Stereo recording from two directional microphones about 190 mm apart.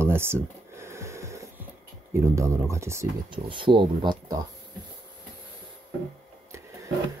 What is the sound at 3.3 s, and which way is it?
Speech, 25° right (ahead or behind).